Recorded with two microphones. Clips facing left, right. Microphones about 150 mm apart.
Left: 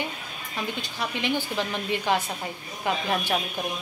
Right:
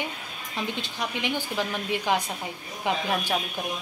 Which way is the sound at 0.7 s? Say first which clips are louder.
Even; 20° right (ahead or behind).